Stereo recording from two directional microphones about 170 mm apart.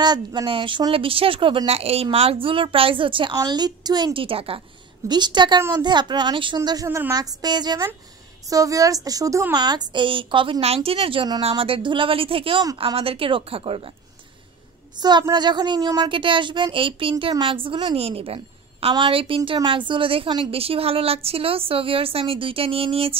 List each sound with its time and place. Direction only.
0.0 s a woman's voice: 25° right (ahead or behind)
15.0 s a woman's voice: 25° right (ahead or behind)